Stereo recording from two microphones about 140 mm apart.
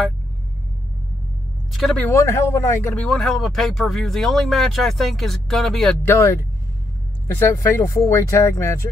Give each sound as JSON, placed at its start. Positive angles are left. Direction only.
{"t": 1.7, "sound": "a woman's voice", "side_deg": 0}
{"t": 2.0, "sound": "speech", "side_deg": 20}
{"t": 3.1, "sound": "speech", "side_deg": 5}
{"t": 6.0, "sound": "speech", "side_deg": 20}